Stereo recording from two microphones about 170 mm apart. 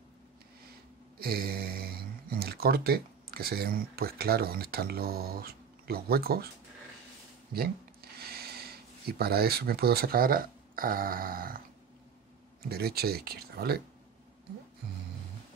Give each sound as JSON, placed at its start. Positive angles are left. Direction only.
{"t": 1.2, "sound": "speech", "side_deg": -65}
{"t": 7.5, "sound": "a sound", "side_deg": -65}
{"t": 9.2, "sound": "speech", "side_deg": -65}
{"t": 12.6, "sound": "speech", "side_deg": -65}